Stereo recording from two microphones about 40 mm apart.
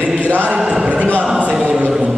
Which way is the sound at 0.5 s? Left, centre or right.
Right.